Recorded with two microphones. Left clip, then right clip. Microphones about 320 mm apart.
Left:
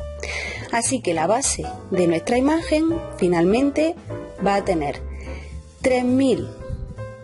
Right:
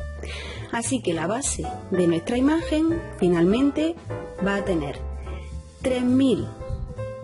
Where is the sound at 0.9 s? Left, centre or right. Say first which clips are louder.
Left 5 dB; centre.